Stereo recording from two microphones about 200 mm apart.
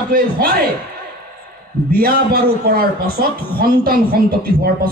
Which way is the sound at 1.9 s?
50° right (ahead or behind).